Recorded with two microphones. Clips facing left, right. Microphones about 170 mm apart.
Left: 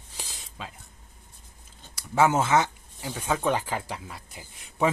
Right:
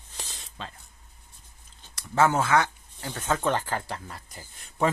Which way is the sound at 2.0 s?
15° left (ahead or behind).